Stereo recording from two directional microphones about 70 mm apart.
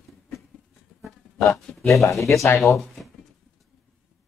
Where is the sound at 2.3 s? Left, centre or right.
Left.